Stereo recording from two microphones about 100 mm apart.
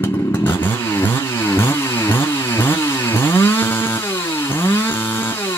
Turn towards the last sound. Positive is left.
turn(degrees=25)  # may be behind; listen again after turning